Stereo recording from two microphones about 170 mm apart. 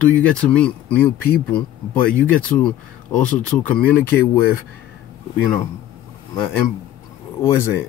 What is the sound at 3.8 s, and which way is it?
Speech, 10° left (ahead or behind).